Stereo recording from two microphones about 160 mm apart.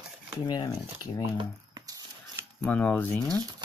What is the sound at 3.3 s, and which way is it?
Speech, 25° right (ahead or behind).